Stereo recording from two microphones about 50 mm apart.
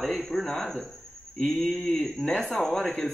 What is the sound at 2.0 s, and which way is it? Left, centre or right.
Speech, left.